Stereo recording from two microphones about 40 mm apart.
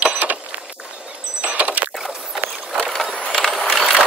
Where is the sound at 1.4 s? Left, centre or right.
Right.